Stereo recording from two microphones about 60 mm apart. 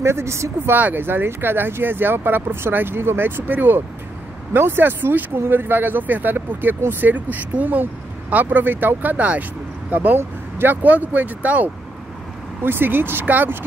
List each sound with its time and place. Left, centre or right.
0.0 s speech: right
0.7 s speech: right
12.6 s speech: right